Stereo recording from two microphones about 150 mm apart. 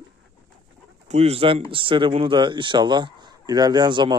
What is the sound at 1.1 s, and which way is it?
Speech, 45° right (ahead or behind).